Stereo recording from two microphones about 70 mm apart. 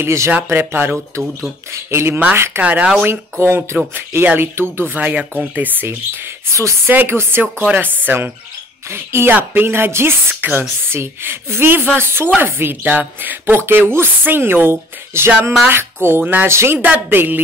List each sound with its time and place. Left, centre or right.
0.0 s speech: right
0.3 s speech: right
1.7 s a sound: right
2.3 s speech: right
2.6 s speech: centre
3.1 s speech: right
4.9 s speech: right
6.5 s speech: right
6.9 s speech: right
16.4 s speech: right
16.7 s speech: right